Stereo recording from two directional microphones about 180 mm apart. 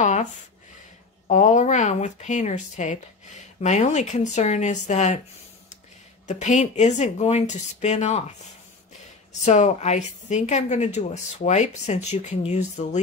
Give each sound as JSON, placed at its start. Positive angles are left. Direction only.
{"t": 0.0, "sound": "a sound", "side_deg": 40}
{"t": 1.2, "sound": "speech", "side_deg": 45}
{"t": 6.2, "sound": "speech", "side_deg": 40}
{"t": 9.4, "sound": "speech", "side_deg": 40}